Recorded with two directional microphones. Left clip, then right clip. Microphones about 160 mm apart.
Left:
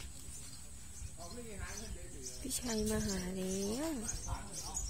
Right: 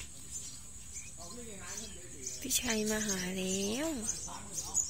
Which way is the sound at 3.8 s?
25° right (ahead or behind).